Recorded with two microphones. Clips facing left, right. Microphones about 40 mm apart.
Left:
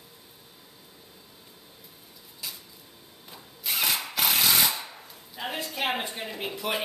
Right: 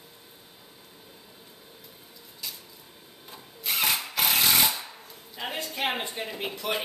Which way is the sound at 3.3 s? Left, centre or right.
Centre.